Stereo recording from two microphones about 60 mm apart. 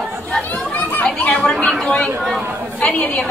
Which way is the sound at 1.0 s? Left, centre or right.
Left.